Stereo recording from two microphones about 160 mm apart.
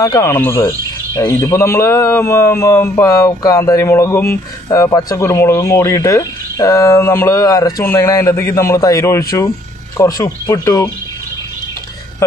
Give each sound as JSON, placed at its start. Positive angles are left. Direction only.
{"t": 0.0, "sound": "speech", "side_deg": 20}
{"t": 12.2, "sound": "speech", "side_deg": 20}